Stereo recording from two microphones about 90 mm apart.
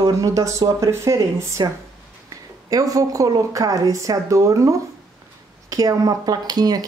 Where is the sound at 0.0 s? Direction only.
40° right (ahead or behind).